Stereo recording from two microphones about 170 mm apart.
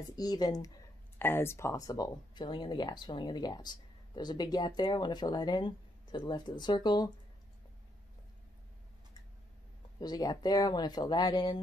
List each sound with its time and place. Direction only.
0.1 s speech: 25° left (ahead or behind)
9.9 s speech: 25° left (ahead or behind)